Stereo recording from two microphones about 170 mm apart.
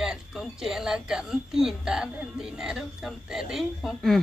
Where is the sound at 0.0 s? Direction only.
5° right (ahead or behind).